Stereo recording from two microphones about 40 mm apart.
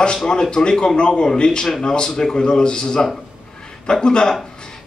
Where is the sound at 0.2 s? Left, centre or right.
Centre.